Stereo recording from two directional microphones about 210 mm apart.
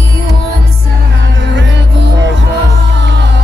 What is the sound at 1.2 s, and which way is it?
Music, 60° right (ahead or behind).